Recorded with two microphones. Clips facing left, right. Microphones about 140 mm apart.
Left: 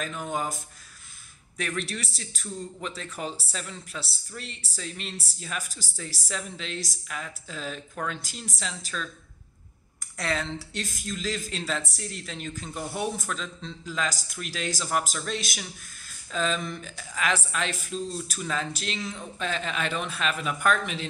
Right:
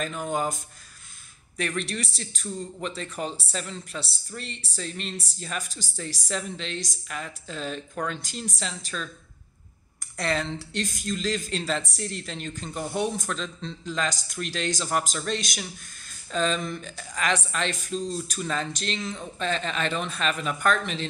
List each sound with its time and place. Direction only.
0.0 s speech: centre (ahead or behind)
1.6 s speech: centre (ahead or behind)
10.1 s speech: centre (ahead or behind)